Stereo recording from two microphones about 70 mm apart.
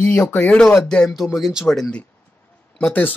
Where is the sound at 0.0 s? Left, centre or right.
Centre.